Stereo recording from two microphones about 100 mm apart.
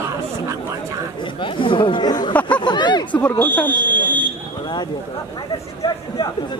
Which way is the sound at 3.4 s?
20° left (ahead or behind).